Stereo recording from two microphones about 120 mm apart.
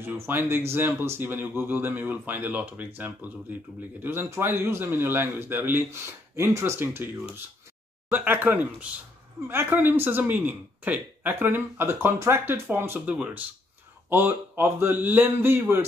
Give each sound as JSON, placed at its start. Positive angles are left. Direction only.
{"t": 0.0, "sound": "a man's voice", "side_deg": -20}